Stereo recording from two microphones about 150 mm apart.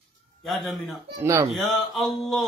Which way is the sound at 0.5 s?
Centre (ahead or behind).